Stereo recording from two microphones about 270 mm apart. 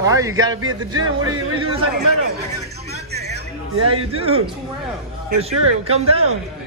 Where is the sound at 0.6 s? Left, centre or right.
Right.